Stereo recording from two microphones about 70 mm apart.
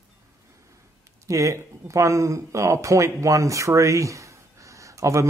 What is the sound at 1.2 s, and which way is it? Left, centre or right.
Speech, right.